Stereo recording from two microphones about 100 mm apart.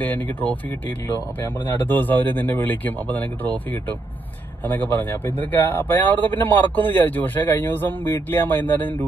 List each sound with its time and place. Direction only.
0.0 s a man's voice: 20° left (ahead or behind)